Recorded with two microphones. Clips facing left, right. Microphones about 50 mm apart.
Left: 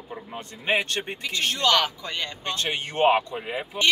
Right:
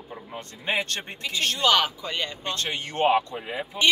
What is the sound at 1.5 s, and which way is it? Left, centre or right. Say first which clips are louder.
Speech: right 1 dB; centre.